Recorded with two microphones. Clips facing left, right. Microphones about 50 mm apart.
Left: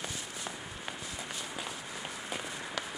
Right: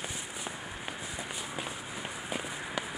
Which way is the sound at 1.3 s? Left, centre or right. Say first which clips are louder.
Right 2 dB; centre.